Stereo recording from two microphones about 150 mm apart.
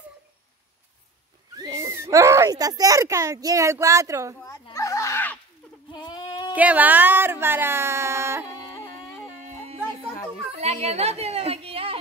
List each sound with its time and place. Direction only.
1.6 s speech: 20° right (ahead or behind)
4.5 s a sound: 25° left (ahead or behind)
5.9 s sheep: 30° left (ahead or behind)
6.5 s speech: 10° right (ahead or behind)
10.6 s a woman's voice: 45° right (ahead or behind)